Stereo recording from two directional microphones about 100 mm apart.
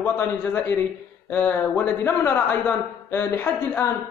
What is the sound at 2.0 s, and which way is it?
A man's voice, 20° left (ahead or behind).